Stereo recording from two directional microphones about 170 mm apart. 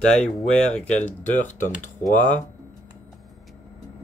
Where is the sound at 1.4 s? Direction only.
45° left (ahead or behind).